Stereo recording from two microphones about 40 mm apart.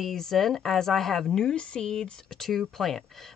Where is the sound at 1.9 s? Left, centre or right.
Centre.